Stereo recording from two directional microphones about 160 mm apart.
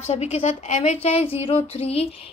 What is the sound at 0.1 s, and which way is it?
A woman's voice, 40° left (ahead or behind).